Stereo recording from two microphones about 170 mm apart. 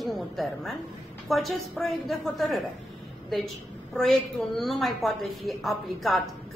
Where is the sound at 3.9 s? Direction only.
Centre (ahead or behind).